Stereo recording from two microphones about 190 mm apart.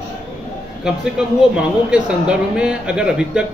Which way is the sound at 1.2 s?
5° right (ahead or behind).